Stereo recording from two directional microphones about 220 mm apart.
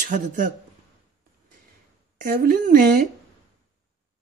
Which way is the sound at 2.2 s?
40° right (ahead or behind).